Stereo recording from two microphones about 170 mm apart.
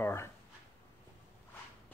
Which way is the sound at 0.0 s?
15° left (ahead or behind).